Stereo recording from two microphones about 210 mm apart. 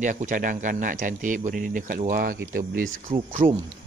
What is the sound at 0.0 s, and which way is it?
Speech, 35° right (ahead or behind).